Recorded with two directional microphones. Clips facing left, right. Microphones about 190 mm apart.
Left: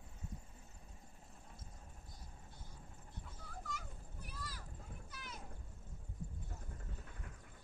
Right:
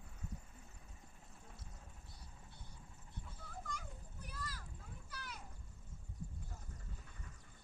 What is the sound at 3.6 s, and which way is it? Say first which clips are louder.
Children playing: even; 5° left (ahead or behind).